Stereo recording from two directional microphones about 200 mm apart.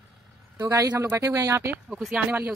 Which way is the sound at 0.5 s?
15° right (ahead or behind).